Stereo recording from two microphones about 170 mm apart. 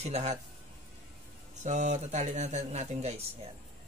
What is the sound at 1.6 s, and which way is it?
Speech, 45° right (ahead or behind).